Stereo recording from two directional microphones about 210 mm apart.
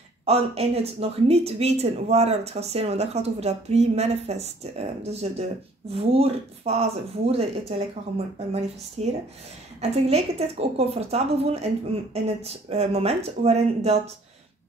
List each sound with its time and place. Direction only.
0.2 s speech: 30° right (ahead or behind)
9.0 s speech: 30° right (ahead or behind)